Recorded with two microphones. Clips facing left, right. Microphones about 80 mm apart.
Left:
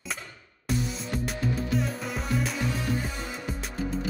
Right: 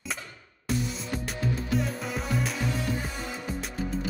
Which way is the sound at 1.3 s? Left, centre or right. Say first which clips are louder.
Even; centre.